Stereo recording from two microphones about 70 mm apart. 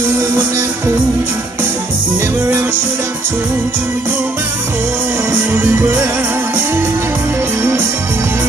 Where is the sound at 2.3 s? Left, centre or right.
Right.